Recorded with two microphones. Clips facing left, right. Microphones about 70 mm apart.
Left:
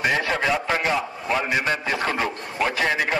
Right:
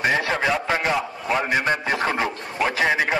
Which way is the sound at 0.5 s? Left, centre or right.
Centre.